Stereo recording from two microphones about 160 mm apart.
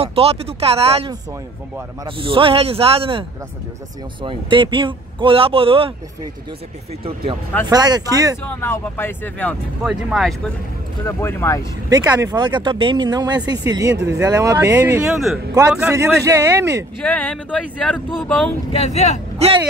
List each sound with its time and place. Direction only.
0.0 s speech: 40° right (ahead or behind)
7.6 s speech: 25° right (ahead or behind)
8.5 s speech: 15° left (ahead or behind)
9.8 s speech: centre (ahead or behind)
11.1 s speech: 15° left (ahead or behind)
11.9 s speech: 25° right (ahead or behind)
17.0 s speech: 5° left (ahead or behind)
18.7 s speech: 45° left (ahead or behind)